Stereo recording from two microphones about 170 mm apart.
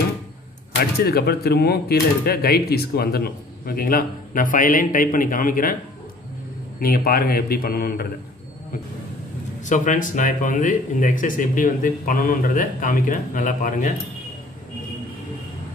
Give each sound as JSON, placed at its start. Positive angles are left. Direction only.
{"t": 0.7, "sound": "speech", "side_deg": 70}
{"t": 6.8, "sound": "speech", "side_deg": 60}
{"t": 9.7, "sound": "speech", "side_deg": 50}